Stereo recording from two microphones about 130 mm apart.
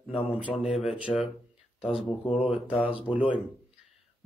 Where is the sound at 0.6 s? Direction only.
Centre (ahead or behind).